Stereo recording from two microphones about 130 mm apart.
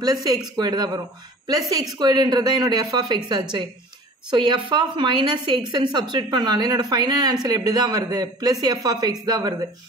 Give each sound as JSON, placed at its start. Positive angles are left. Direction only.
{"t": 0.0, "sound": "speech", "side_deg": -30}
{"t": 4.3, "sound": "speech", "side_deg": -35}